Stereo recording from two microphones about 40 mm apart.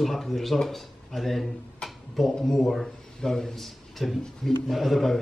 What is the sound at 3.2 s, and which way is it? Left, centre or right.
A man's voice, centre.